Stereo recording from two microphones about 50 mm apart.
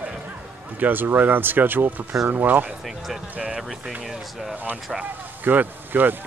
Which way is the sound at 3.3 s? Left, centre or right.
Right.